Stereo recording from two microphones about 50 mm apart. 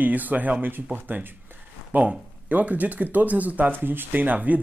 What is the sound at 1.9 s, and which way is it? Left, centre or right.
Speech, right.